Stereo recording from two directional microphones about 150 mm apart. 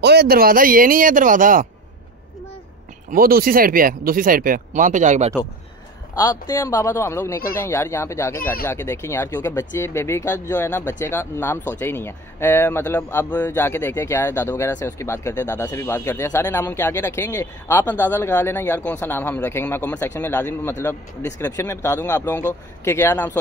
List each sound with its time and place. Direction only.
0.0 s speech: 90° right; by 1.7 s 65° right (ahead or behind)
3.1 s speech: 75° right (ahead or behind); by 5.3 s 50° right (ahead or behind)
6.1 s speech: 20° left (ahead or behind)